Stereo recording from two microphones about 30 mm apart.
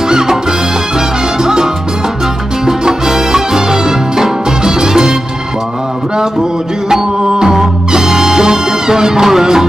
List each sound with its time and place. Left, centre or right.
0.1 s salsa music: centre
1.4 s music: right
2.6 s salsa music: centre
6.9 s music: centre
8.0 s music: centre